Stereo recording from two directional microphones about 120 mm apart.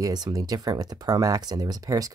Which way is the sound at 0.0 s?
35° right (ahead or behind).